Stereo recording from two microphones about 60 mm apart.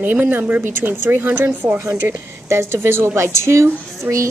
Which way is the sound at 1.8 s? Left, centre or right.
Right.